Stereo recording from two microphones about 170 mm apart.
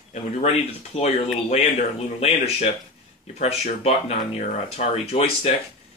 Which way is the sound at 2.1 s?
35° left (ahead or behind).